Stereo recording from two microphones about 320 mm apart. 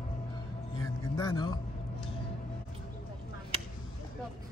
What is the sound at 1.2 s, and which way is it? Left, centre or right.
Speech, centre.